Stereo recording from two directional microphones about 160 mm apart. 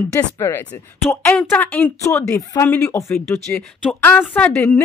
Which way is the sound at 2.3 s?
20° left (ahead or behind).